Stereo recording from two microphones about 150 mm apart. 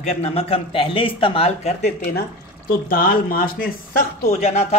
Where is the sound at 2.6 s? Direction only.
80° left.